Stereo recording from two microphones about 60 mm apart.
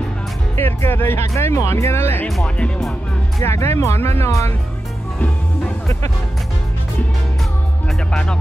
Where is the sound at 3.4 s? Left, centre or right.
Left.